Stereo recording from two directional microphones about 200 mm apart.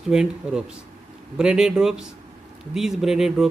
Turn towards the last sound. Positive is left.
turn(degrees=0)  # may be behind; listen again after turning